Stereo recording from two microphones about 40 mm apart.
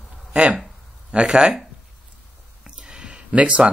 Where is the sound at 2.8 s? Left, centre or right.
Right.